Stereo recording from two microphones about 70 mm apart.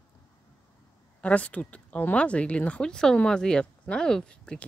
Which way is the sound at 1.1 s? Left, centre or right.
Centre.